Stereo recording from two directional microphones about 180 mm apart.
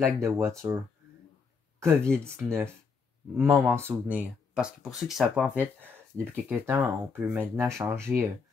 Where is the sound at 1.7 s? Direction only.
15° right (ahead or behind).